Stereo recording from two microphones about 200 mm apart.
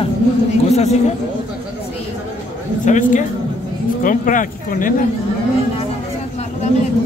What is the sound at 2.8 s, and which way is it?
Speech, 40° left (ahead or behind).